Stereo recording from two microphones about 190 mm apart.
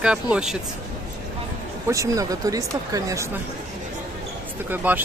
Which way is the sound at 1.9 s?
15° right (ahead or behind).